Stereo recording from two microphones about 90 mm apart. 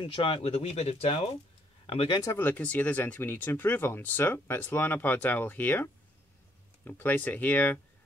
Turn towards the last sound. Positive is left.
turn(degrees=20)  # may be behind; listen again after turning